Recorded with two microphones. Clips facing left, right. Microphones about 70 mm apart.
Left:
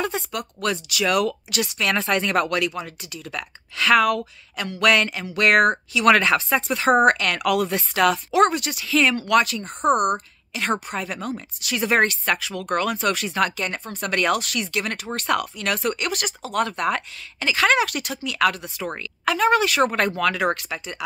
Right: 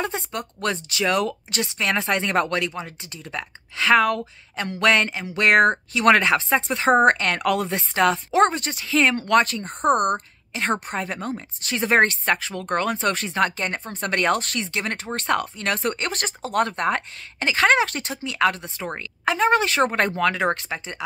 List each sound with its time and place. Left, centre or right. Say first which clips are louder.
0.0 s a woman's voice: left 1 dB; right